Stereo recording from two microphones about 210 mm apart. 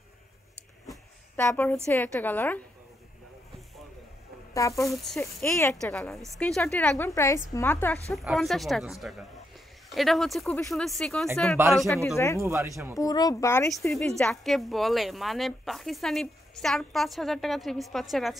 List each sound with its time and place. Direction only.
0.8 s a sound: 5° left (ahead or behind)
2.1 s a woman's voice: 10° left (ahead or behind)
4.6 s a woman's voice: 15° left (ahead or behind)
5.0 s a woman's voice: 5° left (ahead or behind)
12.4 s speech: 15° right (ahead or behind)
12.9 s a woman's voice: 15° left (ahead or behind)
13.7 s speech: 5° left (ahead or behind)